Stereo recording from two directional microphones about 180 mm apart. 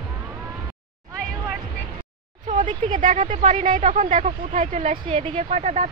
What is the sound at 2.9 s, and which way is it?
Speech, 45° right (ahead or behind).